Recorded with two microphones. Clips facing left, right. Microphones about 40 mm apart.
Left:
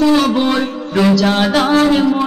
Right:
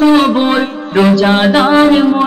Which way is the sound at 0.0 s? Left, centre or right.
Right.